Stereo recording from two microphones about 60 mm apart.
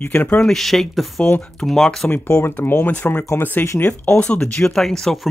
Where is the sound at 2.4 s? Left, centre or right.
Left.